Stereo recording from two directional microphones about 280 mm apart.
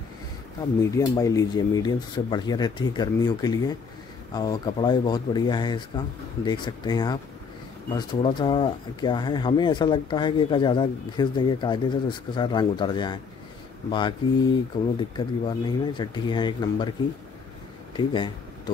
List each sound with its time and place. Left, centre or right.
0.9 s speech: centre
17.9 s speech: centre